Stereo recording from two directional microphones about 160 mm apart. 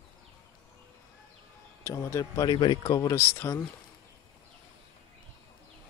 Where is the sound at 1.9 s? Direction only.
20° left (ahead or behind).